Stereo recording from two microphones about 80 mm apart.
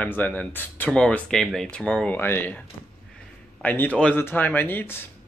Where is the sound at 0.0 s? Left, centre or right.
Left.